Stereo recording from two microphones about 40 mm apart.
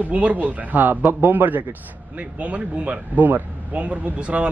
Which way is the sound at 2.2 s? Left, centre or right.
Right.